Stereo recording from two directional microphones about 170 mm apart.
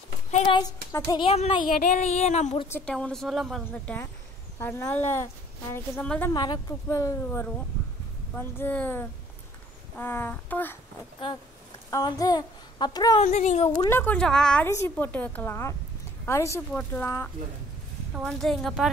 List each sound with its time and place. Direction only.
0.5 s speech: 25° left (ahead or behind)
1.2 s speech: 35° left (ahead or behind)
2.7 s a woman's voice: 5° left (ahead or behind)
6.3 s a woman's voice: 25° left (ahead or behind)
11.9 s speech: 20° left (ahead or behind)
13.2 s speech: 45° left (ahead or behind)
13.7 s a woman's voice: 15° left (ahead or behind)
18.1 s speech: centre (ahead or behind)